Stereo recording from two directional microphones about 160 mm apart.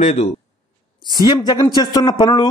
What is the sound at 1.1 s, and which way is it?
Speech, 25° left (ahead or behind).